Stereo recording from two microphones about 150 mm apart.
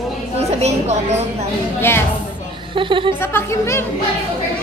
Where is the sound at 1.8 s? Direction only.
15° left (ahead or behind).